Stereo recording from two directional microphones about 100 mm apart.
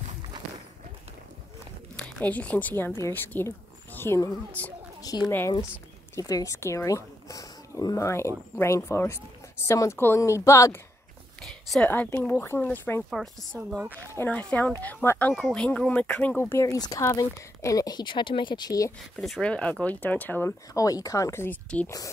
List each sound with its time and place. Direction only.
2.0 s speech: 15° left (ahead or behind)
5.0 s speech: 40° left (ahead or behind)
11.4 s a sound: centre (ahead or behind)
11.8 s speech: 20° left (ahead or behind)
13.1 s a woman's voice: centre (ahead or behind)
14.1 s speech: 15° left (ahead or behind)
16.6 s speech: 40° left (ahead or behind)
19.1 s speech: centre (ahead or behind); by 20.5 s 20° left (ahead or behind)
20.7 s speech: 35° left (ahead or behind)